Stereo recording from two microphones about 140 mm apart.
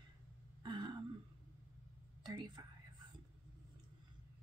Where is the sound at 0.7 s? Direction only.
35° right (ahead or behind).